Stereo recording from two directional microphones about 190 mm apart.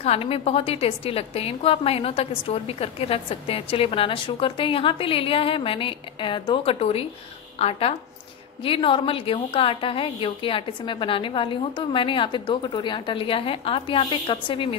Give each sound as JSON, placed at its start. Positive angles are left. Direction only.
{"t": 0.0, "sound": "a woman's voice", "side_deg": 30}